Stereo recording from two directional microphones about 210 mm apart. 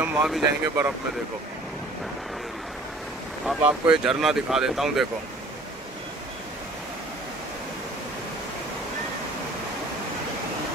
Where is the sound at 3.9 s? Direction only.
5° right (ahead or behind).